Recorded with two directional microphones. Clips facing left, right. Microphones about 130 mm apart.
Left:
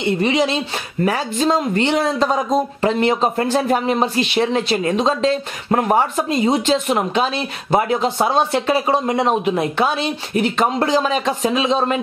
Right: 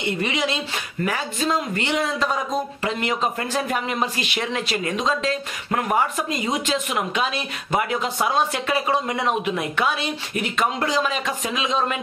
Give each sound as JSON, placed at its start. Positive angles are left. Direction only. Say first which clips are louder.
{"t": 0.0, "sound": "speech", "louder": "left 7 dB", "side_deg": 30}